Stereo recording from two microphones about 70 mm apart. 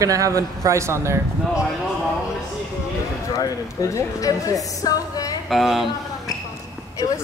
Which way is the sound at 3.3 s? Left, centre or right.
Left.